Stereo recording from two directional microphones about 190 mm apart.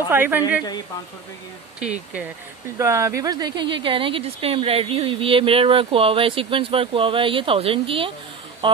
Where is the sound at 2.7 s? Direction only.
15° right (ahead or behind).